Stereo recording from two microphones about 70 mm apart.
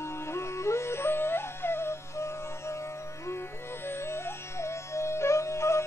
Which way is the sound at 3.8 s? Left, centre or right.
Left.